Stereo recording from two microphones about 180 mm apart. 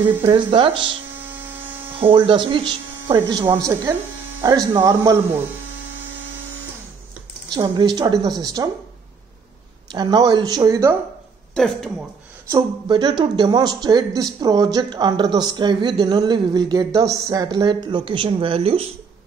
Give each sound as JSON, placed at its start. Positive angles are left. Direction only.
{"t": 0.2, "sound": "speech", "side_deg": -25}
{"t": 2.0, "sound": "speech", "side_deg": -30}
{"t": 7.4, "sound": "speech", "side_deg": -25}
{"t": 9.8, "sound": "speech", "side_deg": -25}
{"t": 11.5, "sound": "speech", "side_deg": 5}
{"t": 12.4, "sound": "speech", "side_deg": -20}